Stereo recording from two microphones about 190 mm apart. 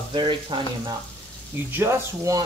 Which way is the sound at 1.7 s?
15° right (ahead or behind).